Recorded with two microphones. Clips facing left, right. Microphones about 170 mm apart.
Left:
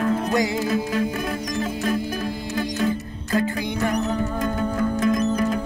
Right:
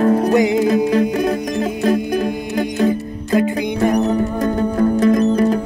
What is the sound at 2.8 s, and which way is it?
Music, 35° right (ahead or behind).